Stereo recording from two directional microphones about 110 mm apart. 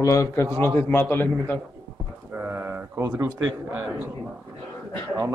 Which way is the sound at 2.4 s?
20° right (ahead or behind).